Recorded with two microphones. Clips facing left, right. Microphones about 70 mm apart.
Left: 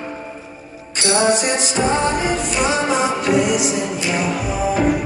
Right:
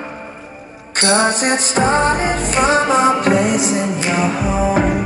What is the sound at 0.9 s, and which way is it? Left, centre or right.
Music, right.